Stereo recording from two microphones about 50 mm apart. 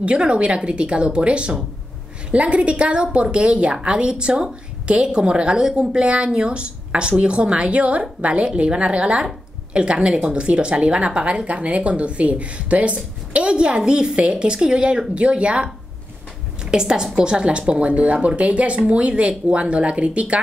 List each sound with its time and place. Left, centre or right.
0.0 s a woman's voice: right
16.7 s a woman's voice: centre